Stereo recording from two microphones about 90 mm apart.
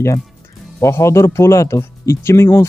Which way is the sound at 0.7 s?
35° left (ahead or behind).